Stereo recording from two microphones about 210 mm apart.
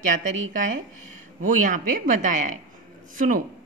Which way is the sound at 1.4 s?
40° right (ahead or behind).